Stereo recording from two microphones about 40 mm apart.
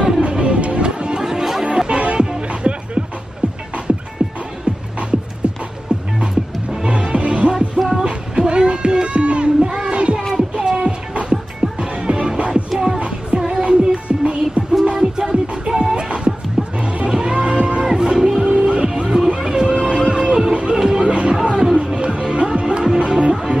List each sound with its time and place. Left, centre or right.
0.0 s music: right
1.2 s music: centre
1.7 s music: right
4.2 s music: right
6.1 s music: right
8.0 s a sound: right
10.5 s music: centre
12.7 s music: centre
18.5 s emergency vehicle: right
20.5 s music: right
21.4 s music: centre
21.8 s music: right